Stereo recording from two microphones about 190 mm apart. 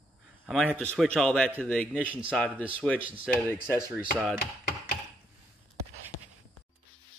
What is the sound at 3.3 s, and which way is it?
Speech, 10° left (ahead or behind).